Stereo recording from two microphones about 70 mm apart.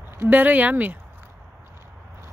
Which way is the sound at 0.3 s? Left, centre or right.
Right.